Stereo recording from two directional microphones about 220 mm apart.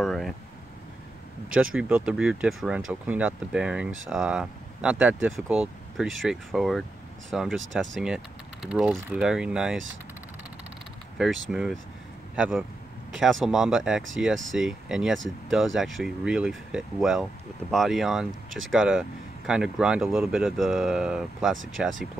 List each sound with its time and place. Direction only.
0.0 s a sound: centre (ahead or behind)
1.8 s speech: 5° right (ahead or behind)
11.5 s speech: centre (ahead or behind)
14.3 s speech: 60° right (ahead or behind)
14.6 s speech: centre (ahead or behind)